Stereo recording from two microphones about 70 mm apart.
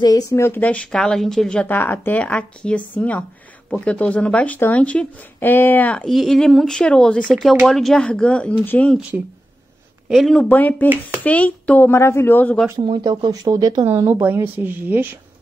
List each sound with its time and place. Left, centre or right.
0.0 s speech: left
0.3 s a man's voice: left
0.9 s a woman's voice: centre
1.7 s speech: left
5.4 s speech: left
6.0 s speech: centre
8.0 s a woman's voice: centre
10.0 s speech: centre
10.5 s speech: left
11.9 s a man's voice: left
12.7 s speech: right
14.2 s a woman's voice: right